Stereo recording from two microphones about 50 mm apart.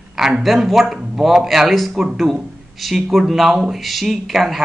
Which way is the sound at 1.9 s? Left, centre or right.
Centre.